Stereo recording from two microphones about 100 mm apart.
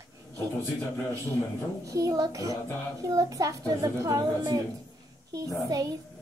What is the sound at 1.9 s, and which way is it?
A woman's voice, 35° right (ahead or behind).